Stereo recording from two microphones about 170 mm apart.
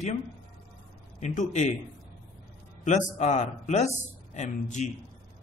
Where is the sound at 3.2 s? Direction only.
45° left (ahead or behind).